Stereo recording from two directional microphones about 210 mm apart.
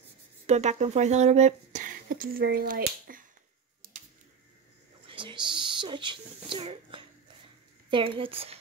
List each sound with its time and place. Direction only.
0.5 s speech: 35° right (ahead or behind)
5.0 s a woman's voice: 25° right (ahead or behind)